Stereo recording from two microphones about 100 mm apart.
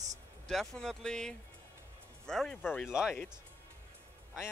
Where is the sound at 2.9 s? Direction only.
5° right (ahead or behind).